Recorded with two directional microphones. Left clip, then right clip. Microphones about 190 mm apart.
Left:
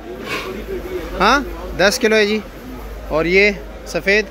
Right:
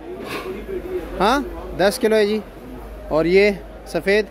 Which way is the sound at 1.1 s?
15° right (ahead or behind).